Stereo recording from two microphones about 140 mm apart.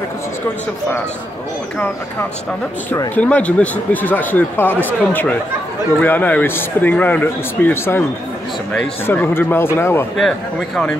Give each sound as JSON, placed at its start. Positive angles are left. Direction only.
{"t": 3.2, "sound": "speech", "side_deg": 10}
{"t": 9.0, "sound": "speech", "side_deg": 15}